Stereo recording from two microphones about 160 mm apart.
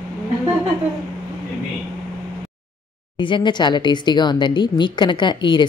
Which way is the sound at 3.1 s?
30° left (ahead or behind).